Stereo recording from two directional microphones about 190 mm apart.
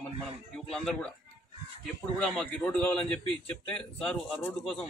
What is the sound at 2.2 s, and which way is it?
Speech, 5° left (ahead or behind).